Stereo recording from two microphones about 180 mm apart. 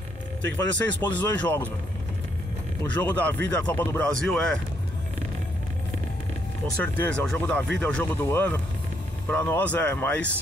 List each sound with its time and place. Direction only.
0.6 s speech: 20° left (ahead or behind)
1.4 s speech: 10° left (ahead or behind)
2.8 s speech: 10° left (ahead or behind)
6.8 s speech: 10° left (ahead or behind)